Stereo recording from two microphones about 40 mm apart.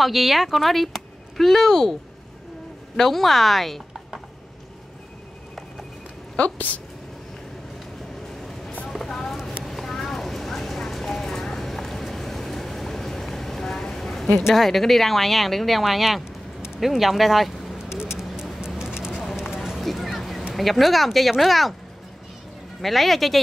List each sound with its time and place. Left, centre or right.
0.0 s speech: centre
3.0 s speech: centre
6.3 s a woman's voice: left
8.4 s vehicle: centre
8.9 s a sound: centre
9.7 s clip-clop: centre
14.5 s speech: centre
18.3 s a sound: centre
19.8 s a sound: centre
20.5 s speech: centre
22.8 s speech: centre